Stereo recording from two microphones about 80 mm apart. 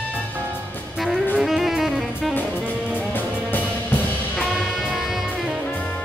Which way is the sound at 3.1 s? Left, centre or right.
Left.